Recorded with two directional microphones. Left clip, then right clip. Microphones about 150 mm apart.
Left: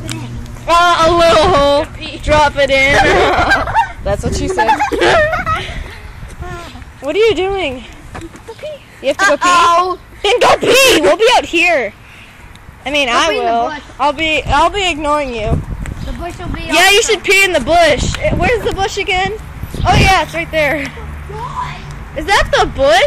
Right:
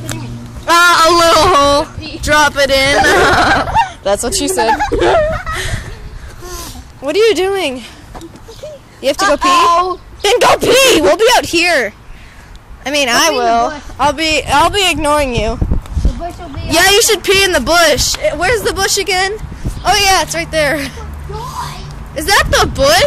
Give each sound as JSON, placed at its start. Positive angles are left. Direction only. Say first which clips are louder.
{"t": 0.7, "sound": "a sound", "louder": "right 2 dB", "side_deg": -35}
{"t": 2.2, "sound": "speech", "louder": "even", "side_deg": -25}
{"t": 3.3, "sound": "speech", "louder": "right 2 dB", "side_deg": -35}
{"t": 4.9, "sound": "speech", "louder": "even", "side_deg": 5}
{"t": 7.1, "sound": "speech", "louder": "right 1 dB", "side_deg": -20}
{"t": 9.0, "sound": "speech", "louder": "right 1 dB", "side_deg": -25}
{"t": 9.7, "sound": "speech", "louder": "even", "side_deg": 50}
{"t": 10.2, "sound": "speech", "louder": "even", "side_deg": -20}
{"t": 12.9, "sound": "speech", "louder": "right 1 dB", "side_deg": -25}
{"t": 13.3, "sound": "speech", "louder": "right 2 dB", "side_deg": -35}
{"t": 16.6, "sound": "speech", "louder": "even", "side_deg": -20}
{"t": 19.0, "sound": "speech", "louder": "right 1 dB", "side_deg": -90}
{"t": 19.8, "sound": "speech", "louder": "even", "side_deg": -10}
{"t": 22.1, "sound": "speech", "louder": "right 1 dB", "side_deg": -25}